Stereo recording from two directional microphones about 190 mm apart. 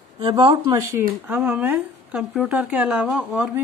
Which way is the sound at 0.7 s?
10° right (ahead or behind).